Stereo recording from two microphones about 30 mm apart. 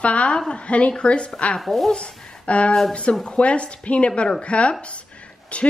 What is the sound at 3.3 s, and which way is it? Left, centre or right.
A woman's voice, left.